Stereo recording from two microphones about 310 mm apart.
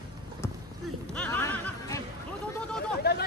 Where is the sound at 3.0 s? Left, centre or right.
Left.